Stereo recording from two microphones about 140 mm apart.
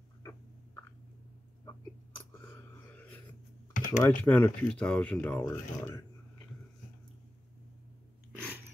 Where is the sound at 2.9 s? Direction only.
10° left (ahead or behind).